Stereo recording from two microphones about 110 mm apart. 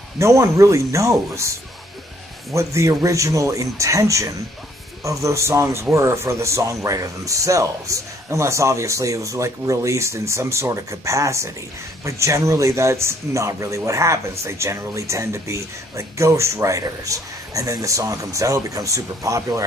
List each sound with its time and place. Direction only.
0.2 s speech: 25° right (ahead or behind)
2.5 s speech: 30° right (ahead or behind)